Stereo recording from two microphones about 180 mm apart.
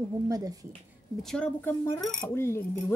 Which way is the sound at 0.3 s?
20° right (ahead or behind).